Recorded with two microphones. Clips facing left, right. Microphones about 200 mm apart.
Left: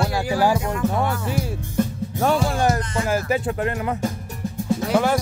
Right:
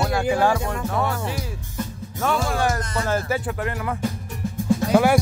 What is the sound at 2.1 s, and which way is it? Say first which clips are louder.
Music: left 3 dB; 35° left (ahead or behind).